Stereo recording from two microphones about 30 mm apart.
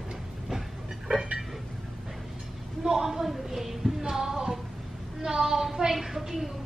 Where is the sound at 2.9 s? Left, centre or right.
Centre.